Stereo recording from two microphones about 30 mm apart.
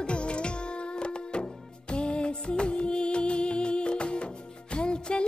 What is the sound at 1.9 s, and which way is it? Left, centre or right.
Music, left.